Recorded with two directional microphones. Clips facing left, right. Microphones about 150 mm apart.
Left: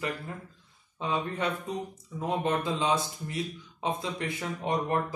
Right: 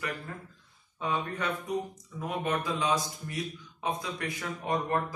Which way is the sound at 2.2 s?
25° left (ahead or behind).